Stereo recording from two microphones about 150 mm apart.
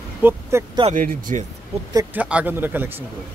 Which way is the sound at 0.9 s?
60° right (ahead or behind).